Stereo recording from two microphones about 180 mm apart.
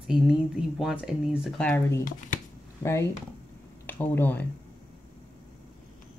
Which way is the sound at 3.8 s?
10° left (ahead or behind).